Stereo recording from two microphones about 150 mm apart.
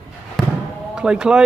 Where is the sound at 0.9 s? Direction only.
5° right (ahead or behind).